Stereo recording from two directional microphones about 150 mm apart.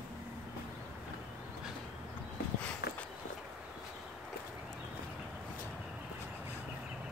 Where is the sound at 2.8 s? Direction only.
90° left.